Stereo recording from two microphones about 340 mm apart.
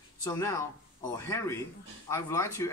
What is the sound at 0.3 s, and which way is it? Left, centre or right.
A man's voice, centre.